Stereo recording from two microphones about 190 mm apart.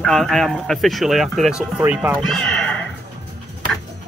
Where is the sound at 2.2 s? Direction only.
5° left (ahead or behind).